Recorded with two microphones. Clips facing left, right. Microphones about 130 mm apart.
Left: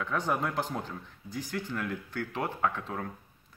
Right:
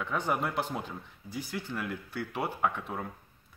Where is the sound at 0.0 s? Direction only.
10° right (ahead or behind).